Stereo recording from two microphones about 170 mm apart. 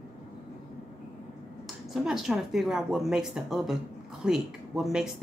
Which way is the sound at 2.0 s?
Centre (ahead or behind).